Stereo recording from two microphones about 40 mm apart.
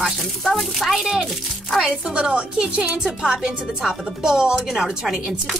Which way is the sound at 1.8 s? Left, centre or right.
Right.